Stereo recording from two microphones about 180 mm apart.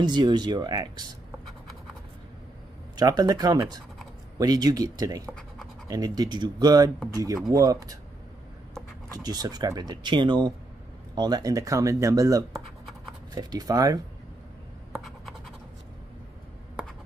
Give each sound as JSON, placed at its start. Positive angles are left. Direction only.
{"t": 0.0, "sound": "speech", "side_deg": -25}
{"t": 3.0, "sound": "speech", "side_deg": -20}
{"t": 9.1, "sound": "speech", "side_deg": -20}
{"t": 15.0, "sound": "scratch", "side_deg": 0}